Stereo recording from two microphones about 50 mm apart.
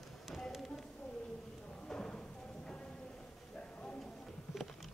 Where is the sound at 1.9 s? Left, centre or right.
Centre.